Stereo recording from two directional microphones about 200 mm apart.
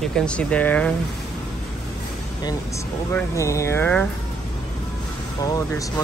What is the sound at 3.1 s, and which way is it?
Speech, 15° left (ahead or behind).